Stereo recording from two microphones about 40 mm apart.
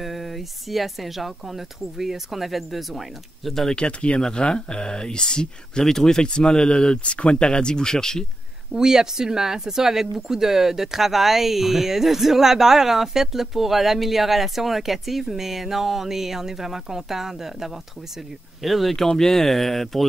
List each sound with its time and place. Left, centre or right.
0.0 s speech: centre
3.6 s speech: left
8.7 s speech: centre
19.0 s speech: centre